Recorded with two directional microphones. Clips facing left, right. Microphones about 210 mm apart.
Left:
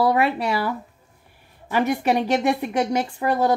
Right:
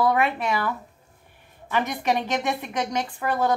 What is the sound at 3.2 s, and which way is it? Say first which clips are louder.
Speech: left 4 dB; 20° left (ahead or behind).